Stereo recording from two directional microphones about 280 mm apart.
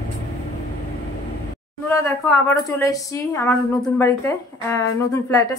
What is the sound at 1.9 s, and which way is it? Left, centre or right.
A woman's voice, centre.